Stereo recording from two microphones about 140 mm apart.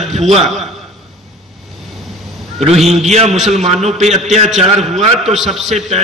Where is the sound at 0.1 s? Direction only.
50° right (ahead or behind).